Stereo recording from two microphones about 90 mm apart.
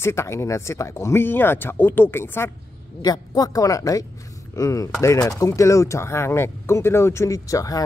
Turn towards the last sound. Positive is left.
turn(degrees=40)  # may be behind; listen again after turning